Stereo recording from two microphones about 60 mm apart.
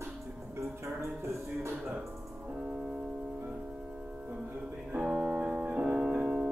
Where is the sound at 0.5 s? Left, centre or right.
Right.